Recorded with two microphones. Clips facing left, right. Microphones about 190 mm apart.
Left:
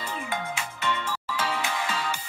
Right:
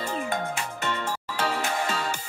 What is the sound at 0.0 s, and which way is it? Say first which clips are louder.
Music: right 4 dB; 45° right (ahead or behind).